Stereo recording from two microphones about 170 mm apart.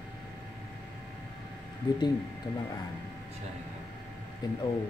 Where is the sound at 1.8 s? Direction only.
25° left (ahead or behind).